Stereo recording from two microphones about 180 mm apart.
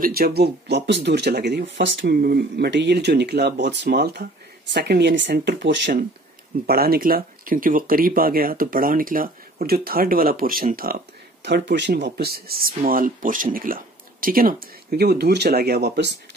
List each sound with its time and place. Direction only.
0.0 s speech: 60° right (ahead or behind)
6.6 s speech: 55° right (ahead or behind)
11.4 s speech: 75° right (ahead or behind)